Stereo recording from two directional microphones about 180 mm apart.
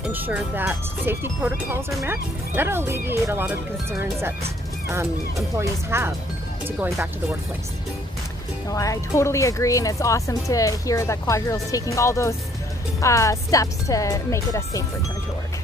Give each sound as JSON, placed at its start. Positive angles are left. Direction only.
{"t": 0.0, "sound": "speech", "side_deg": -10}
{"t": 5.6, "sound": "speech", "side_deg": -15}
{"t": 8.6, "sound": "speech", "side_deg": 20}